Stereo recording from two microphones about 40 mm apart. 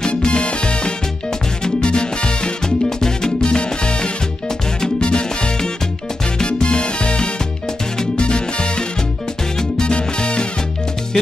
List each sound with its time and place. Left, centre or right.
0.0 s music: left
3.4 s salsa music: left
4.8 s music: left
8.2 s salsa music: left
9.6 s music: left